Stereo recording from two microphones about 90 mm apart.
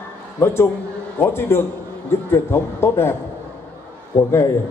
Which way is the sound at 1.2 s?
25° left (ahead or behind).